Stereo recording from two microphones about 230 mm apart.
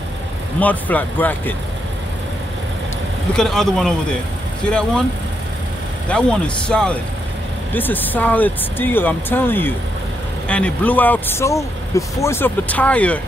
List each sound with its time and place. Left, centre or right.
0.6 s speech: centre
3.3 s speech: centre
6.0 s speech: centre